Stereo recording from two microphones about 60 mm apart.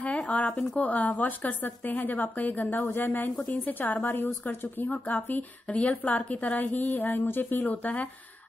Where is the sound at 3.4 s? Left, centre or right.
Left.